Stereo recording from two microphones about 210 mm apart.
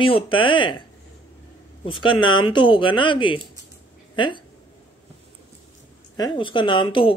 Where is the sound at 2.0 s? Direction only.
25° left (ahead or behind).